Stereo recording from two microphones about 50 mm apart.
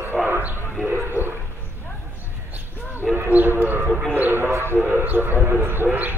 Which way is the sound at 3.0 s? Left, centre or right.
Centre.